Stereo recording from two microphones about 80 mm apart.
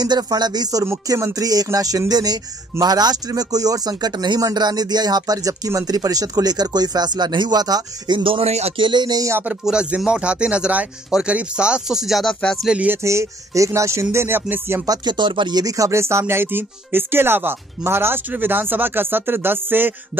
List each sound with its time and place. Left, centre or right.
0.0 s speech: right
8.2 s speech: right
9.7 s speech: centre
12.6 s speech: centre
12.9 s speech: right
14.9 s music: right
15.6 s speech: right